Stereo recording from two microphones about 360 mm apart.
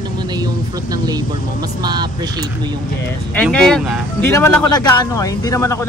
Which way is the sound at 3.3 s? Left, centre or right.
Centre.